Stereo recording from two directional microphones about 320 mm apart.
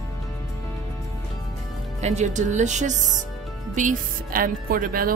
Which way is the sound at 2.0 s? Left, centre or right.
Right.